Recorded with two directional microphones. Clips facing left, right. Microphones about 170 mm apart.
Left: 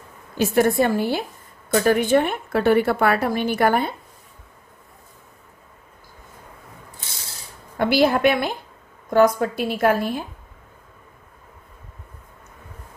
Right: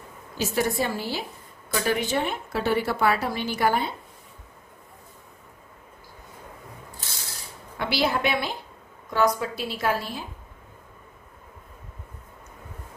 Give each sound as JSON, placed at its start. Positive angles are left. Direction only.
{"t": 0.4, "sound": "a woman's voice", "side_deg": 55}
{"t": 7.7, "sound": "a woman's voice", "side_deg": 50}